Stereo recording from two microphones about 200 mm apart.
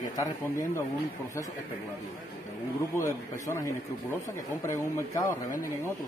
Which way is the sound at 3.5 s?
15° left (ahead or behind).